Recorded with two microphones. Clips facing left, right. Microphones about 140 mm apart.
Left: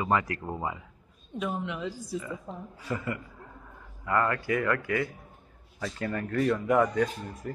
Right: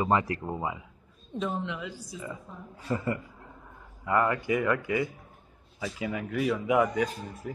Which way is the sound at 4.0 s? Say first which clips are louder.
Right 1 dB; 20° right (ahead or behind).